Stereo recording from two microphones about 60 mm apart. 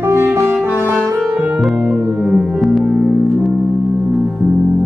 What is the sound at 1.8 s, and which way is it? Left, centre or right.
Music, centre.